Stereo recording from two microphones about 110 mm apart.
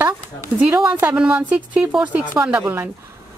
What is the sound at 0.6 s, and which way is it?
Speech, 10° right (ahead or behind).